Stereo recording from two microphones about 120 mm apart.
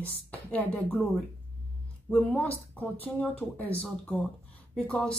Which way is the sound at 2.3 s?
10° left (ahead or behind).